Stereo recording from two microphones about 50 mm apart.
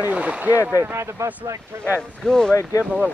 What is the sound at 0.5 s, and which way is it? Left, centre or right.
Speech, left.